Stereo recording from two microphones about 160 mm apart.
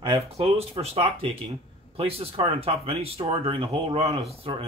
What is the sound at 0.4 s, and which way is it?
Speech, 40° right (ahead or behind).